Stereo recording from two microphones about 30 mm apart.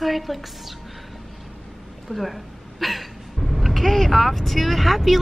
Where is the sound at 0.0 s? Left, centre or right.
Centre.